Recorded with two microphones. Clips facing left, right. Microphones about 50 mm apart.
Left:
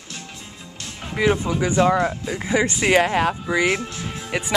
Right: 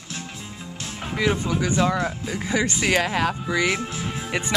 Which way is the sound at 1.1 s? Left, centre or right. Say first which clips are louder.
Left 3 dB; centre.